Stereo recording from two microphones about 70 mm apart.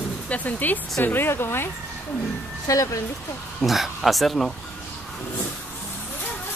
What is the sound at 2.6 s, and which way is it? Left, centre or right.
Speech, left.